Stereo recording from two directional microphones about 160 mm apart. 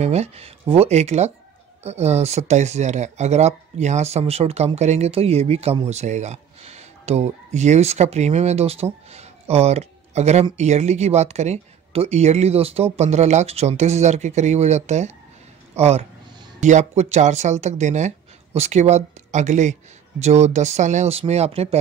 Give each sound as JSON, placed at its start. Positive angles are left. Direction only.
{"t": 0.0, "sound": "speech", "side_deg": -45}